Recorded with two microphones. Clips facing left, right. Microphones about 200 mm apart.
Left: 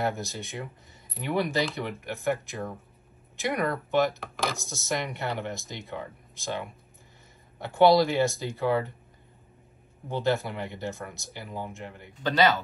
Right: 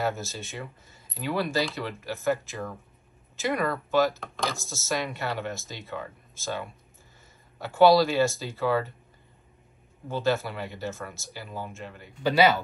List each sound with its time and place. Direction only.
0.0 s speech: 15° left (ahead or behind)
4.1 s speech: centre (ahead or behind)
4.6 s speech: 15° left (ahead or behind)
10.0 s speech: 15° left (ahead or behind)
12.2 s speech: 10° right (ahead or behind)